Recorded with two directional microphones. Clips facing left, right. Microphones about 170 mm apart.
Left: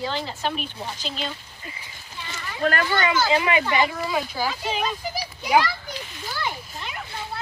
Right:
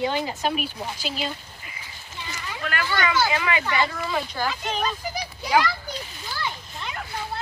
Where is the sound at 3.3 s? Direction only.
20° left (ahead or behind); by 4.9 s 5° left (ahead or behind).